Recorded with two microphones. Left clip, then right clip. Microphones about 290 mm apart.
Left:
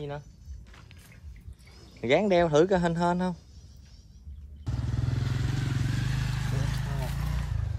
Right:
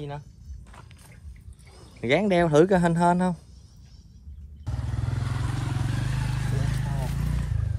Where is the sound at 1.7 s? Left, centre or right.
Right.